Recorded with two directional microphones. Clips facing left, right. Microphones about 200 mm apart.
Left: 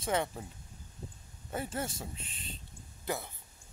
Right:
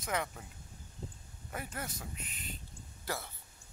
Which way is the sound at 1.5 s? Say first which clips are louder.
Left 6 dB; 30° left (ahead or behind).